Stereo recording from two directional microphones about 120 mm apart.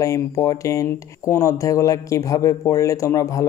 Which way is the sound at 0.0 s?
25° left (ahead or behind).